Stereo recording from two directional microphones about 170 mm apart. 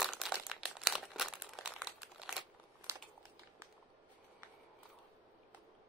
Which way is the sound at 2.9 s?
15° right (ahead or behind).